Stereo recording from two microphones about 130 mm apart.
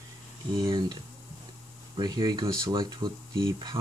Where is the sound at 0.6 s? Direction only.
35° right (ahead or behind).